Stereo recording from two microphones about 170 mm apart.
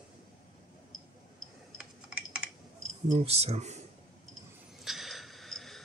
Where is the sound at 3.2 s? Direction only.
35° right (ahead or behind).